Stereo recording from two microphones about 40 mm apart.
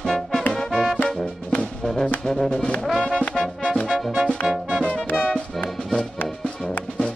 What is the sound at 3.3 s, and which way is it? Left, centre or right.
Music, centre.